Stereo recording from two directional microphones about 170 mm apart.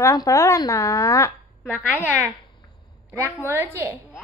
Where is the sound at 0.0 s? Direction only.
20° left (ahead or behind).